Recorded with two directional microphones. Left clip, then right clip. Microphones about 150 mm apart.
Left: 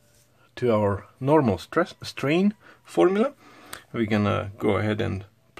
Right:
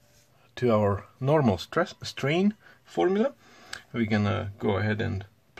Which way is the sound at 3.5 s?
25° left (ahead or behind).